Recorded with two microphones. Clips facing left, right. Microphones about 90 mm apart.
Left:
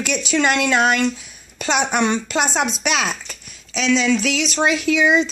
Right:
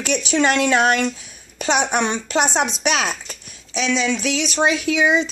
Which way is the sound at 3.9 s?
15° right (ahead or behind).